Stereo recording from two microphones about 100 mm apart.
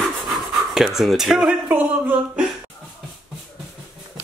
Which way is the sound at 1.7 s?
15° right (ahead or behind).